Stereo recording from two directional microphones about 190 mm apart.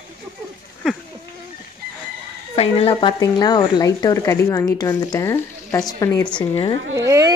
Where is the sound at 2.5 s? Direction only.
30° left (ahead or behind); by 6.4 s 15° left (ahead or behind).